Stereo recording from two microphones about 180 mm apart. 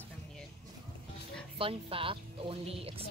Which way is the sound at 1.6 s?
30° right (ahead or behind).